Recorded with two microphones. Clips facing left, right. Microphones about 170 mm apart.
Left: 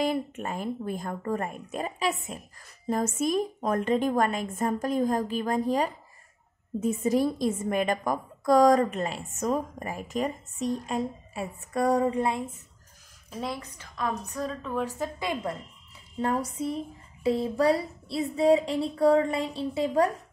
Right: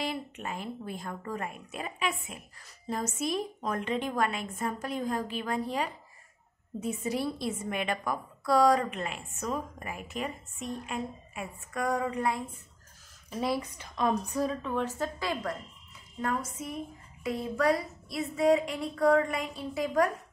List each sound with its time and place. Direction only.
0.0 s a woman's voice: 45° left (ahead or behind)
2.9 s a woman's voice: 50° left (ahead or behind); by 12.4 s 25° left (ahead or behind)
13.3 s speech: 5° right (ahead or behind)
13.7 s a woman's voice: 20° right (ahead or behind)
14.3 s a woman's voice: 5° right (ahead or behind)
14.7 s speech: 5° left (ahead or behind)
15.1 s a woman's voice: 20° left (ahead or behind)
16.2 s speech: 30° left (ahead or behind)